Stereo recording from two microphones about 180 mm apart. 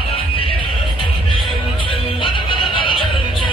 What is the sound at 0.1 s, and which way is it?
Music, 30° left (ahead or behind).